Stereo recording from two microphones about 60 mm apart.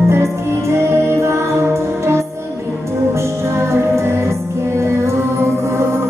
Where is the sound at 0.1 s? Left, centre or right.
Right.